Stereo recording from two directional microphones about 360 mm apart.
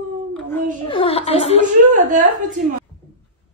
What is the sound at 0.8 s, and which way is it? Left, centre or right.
Speech, centre.